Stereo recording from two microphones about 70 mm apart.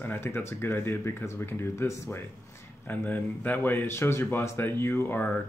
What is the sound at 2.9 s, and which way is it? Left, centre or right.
Speech, left.